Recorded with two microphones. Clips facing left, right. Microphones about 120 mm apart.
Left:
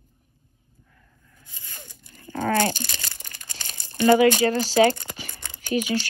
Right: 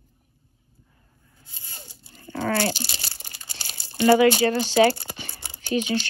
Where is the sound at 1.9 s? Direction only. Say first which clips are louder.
Right 1 dB; 50° left (ahead or behind).